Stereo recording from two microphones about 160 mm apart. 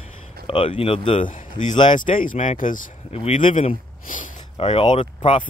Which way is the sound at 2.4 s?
45° left (ahead or behind).